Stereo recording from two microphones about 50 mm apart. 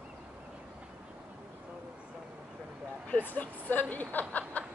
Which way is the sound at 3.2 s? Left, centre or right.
Left.